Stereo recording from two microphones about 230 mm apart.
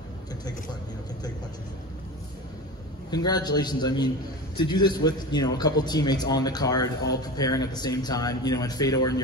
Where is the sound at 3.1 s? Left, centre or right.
Centre.